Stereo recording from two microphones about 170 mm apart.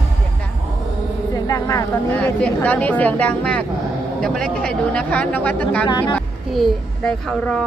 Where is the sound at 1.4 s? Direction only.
20° left (ahead or behind).